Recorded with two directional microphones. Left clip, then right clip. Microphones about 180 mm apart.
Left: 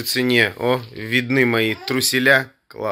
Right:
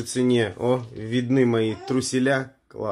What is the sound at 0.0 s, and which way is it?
Speech, 5° left (ahead or behind).